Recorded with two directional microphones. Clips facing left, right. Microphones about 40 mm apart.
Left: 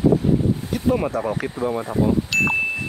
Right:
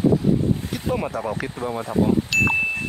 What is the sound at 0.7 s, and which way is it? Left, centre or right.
Speech, centre.